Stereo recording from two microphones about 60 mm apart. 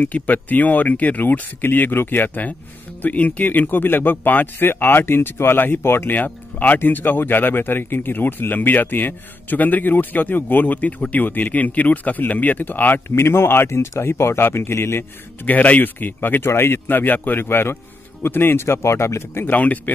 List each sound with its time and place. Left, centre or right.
0.0 s speech: left
6.1 s speech: left
13.1 s speech: left
15.4 s speech: left
18.8 s speech: left
19.4 s speech: left